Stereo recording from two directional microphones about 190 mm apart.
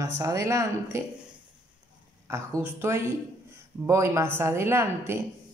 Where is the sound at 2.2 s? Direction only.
15° right (ahead or behind).